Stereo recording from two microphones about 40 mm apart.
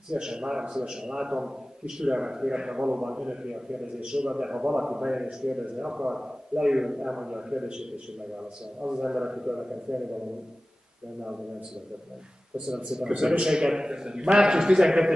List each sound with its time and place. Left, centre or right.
0.1 s a man's voice: centre
8.8 s a man's voice: centre
12.5 s a man's voice: centre